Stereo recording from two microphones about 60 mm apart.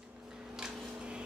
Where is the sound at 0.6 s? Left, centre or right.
Centre.